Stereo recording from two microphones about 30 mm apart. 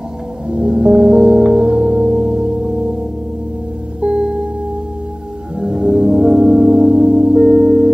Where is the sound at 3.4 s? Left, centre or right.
Right.